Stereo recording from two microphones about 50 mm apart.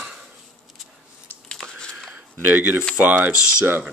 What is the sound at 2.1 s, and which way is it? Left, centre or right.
Speech, right.